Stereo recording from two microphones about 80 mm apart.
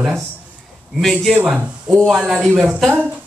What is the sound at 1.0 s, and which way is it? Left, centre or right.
Speech, centre.